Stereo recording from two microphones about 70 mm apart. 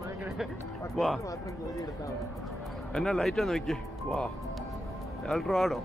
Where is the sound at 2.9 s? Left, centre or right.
Centre.